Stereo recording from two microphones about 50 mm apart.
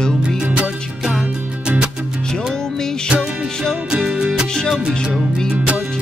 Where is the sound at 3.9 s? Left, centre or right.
Centre.